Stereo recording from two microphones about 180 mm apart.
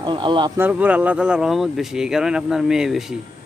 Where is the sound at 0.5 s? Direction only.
10° right (ahead or behind).